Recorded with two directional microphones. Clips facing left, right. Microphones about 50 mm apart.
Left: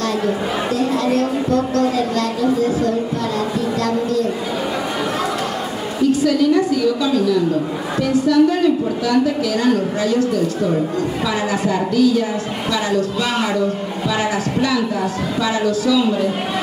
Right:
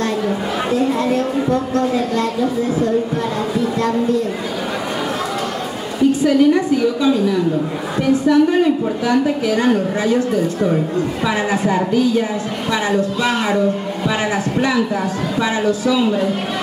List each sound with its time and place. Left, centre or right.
0.7 s speech: right
8.0 s speech: right
11.2 s speech: right
14.0 s speech: right